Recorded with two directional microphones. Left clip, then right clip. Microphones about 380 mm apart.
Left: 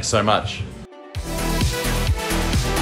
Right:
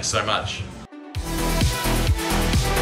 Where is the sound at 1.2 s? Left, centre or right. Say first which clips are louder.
Even; centre.